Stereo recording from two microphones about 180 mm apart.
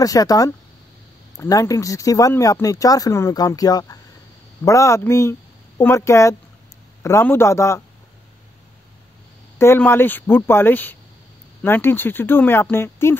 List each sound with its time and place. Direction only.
0.0 s speech: 20° left (ahead or behind)
9.6 s speech: 15° left (ahead or behind)